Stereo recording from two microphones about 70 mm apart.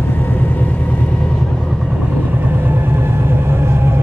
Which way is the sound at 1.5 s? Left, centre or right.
Centre.